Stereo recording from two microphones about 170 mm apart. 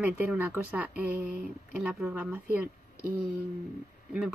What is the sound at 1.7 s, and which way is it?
Speech, 10° right (ahead or behind).